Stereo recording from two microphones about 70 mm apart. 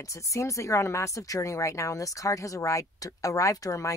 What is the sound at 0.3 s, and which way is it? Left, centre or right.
Speech, left.